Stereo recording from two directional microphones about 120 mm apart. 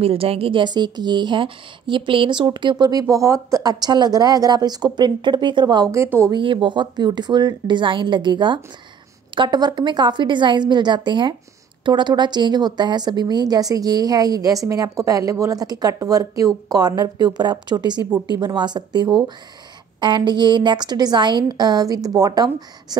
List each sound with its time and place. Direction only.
0.0 s a woman's voice: 50° right (ahead or behind); by 22.9 s 35° right (ahead or behind)